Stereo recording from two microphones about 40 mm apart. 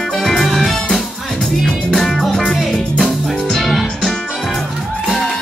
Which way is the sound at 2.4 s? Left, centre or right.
Left.